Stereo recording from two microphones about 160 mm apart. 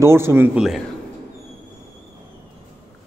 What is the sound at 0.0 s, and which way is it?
Speech, 15° right (ahead or behind).